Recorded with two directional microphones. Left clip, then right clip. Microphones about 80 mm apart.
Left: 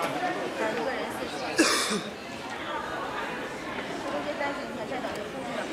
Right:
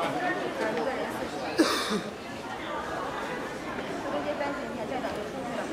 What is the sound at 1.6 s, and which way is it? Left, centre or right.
Cough, left.